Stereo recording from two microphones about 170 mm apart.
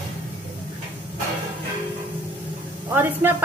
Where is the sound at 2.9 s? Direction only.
15° right (ahead or behind).